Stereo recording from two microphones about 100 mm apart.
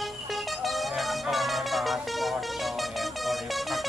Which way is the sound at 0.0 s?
Centre (ahead or behind).